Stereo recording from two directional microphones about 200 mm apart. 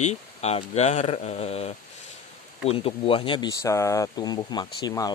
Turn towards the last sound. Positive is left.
turn(degrees=20)  # may be behind; listen again after turning